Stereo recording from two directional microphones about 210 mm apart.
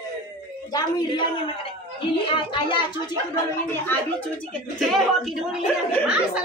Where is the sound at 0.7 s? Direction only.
20° left (ahead or behind).